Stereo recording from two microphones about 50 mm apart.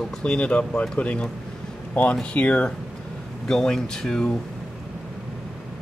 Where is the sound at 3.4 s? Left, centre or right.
Centre.